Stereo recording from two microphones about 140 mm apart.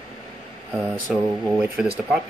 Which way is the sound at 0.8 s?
20° right (ahead or behind).